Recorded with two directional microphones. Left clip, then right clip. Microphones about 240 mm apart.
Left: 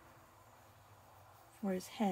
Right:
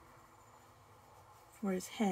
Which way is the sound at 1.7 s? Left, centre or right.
Centre.